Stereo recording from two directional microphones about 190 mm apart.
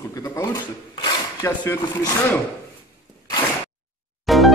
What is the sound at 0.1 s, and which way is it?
Speech, 20° left (ahead or behind).